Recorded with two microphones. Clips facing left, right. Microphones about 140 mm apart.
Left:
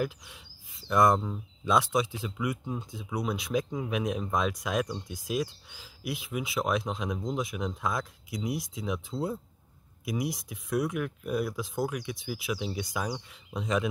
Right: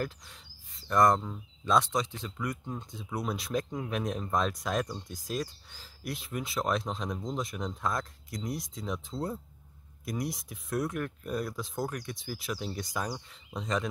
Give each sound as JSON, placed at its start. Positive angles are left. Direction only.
{"t": 0.8, "sound": "speech", "side_deg": 5}
{"t": 10.0, "sound": "speech", "side_deg": 0}